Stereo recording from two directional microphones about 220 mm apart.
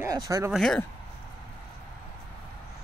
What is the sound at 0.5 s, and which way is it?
Speech, 5° left (ahead or behind).